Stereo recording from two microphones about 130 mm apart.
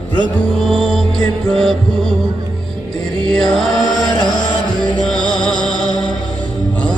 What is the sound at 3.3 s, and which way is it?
Mantra, 5° left (ahead or behind).